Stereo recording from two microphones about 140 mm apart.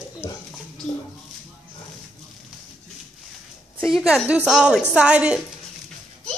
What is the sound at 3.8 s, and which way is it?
A woman's voice, centre (ahead or behind).